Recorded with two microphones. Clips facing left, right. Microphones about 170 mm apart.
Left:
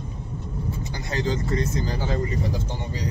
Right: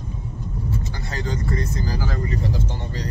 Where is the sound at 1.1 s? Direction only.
20° left (ahead or behind).